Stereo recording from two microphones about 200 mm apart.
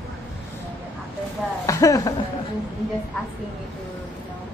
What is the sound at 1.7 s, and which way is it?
Speech, 15° left (ahead or behind).